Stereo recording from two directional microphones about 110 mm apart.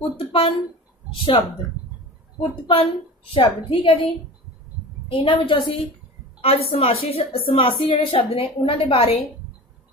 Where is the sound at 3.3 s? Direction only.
50° left (ahead or behind).